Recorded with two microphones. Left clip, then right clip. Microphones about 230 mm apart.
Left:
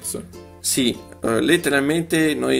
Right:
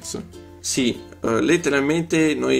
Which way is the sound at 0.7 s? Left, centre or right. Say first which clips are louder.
Left 1 dB; centre.